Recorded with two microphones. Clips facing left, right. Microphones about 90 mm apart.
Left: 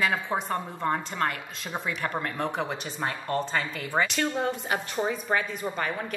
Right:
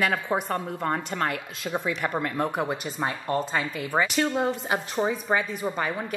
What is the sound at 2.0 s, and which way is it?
A woman's voice, 10° right (ahead or behind).